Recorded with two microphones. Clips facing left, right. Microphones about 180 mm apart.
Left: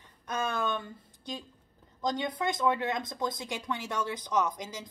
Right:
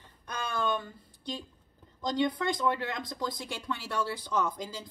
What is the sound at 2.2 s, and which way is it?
Speech, 20° left (ahead or behind).